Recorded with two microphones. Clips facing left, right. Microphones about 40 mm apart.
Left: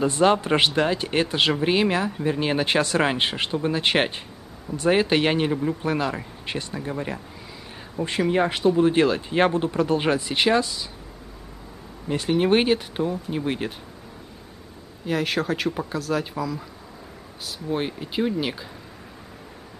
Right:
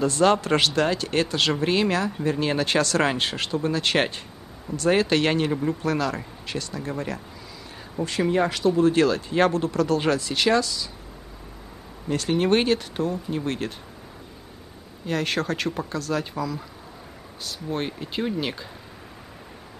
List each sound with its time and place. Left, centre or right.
0.0 s speech: centre
5.5 s speech: centre
5.8 s speech: left
6.8 s speech: centre
8.3 s speech: left
12.3 s speech: centre
15.0 s speech: centre